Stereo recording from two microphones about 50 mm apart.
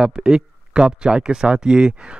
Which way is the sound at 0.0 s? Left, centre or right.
Centre.